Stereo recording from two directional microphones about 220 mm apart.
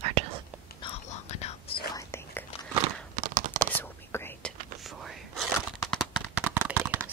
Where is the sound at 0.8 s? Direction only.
30° left (ahead or behind); by 2.5 s 10° left (ahead or behind).